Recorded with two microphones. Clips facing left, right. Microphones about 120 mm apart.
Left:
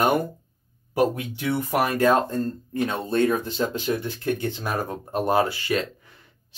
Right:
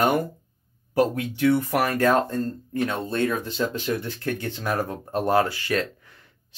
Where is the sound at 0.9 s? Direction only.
15° left (ahead or behind).